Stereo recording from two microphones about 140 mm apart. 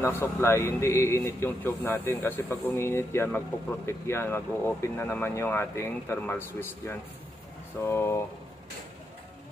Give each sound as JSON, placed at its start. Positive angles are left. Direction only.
{"t": 0.2, "sound": "a man's voice", "side_deg": 20}